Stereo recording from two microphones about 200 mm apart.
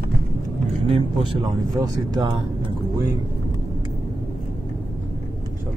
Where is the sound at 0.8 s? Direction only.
25° right (ahead or behind).